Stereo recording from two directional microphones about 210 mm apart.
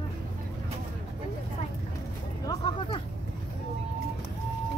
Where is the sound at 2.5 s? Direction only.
25° left (ahead or behind).